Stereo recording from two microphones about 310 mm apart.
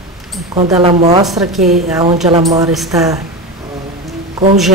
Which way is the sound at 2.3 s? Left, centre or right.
Centre.